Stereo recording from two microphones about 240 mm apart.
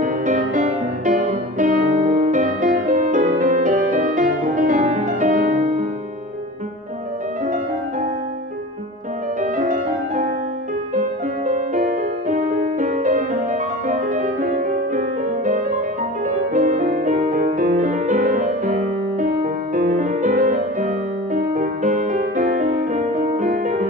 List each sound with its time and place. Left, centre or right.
0.0 s music: right
9.4 s music: right